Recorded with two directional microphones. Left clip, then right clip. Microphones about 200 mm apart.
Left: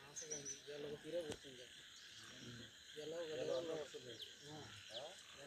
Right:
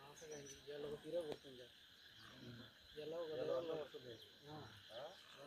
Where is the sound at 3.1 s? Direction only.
5° left (ahead or behind).